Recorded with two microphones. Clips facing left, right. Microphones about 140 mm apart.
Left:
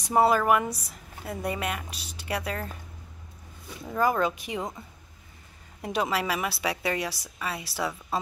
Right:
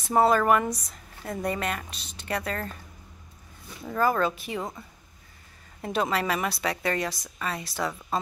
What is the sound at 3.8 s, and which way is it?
Speech, 15° left (ahead or behind).